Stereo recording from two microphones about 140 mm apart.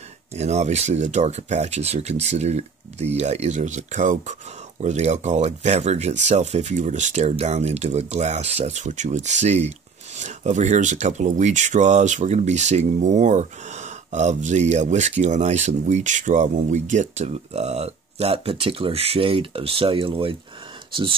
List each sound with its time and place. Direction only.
0.3 s speech: 50° right (ahead or behind)